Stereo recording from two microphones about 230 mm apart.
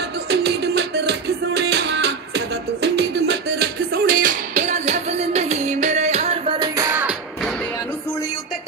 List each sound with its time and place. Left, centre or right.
0.3 s music: right; by 7.5 s centre